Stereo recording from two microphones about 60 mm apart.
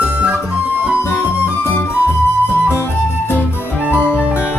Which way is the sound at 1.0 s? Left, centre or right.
Left.